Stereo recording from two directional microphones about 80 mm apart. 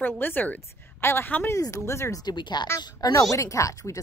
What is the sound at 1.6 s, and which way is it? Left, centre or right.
Speech, left.